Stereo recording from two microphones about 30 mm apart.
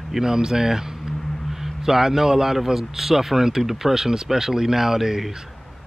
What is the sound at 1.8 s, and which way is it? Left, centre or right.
A man's voice, centre.